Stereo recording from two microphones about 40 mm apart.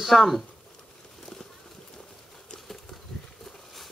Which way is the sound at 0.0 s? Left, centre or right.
Centre.